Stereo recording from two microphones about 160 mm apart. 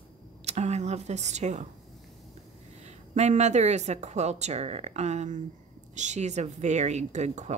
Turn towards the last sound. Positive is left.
turn(degrees=-45)  # may be behind; listen again after turning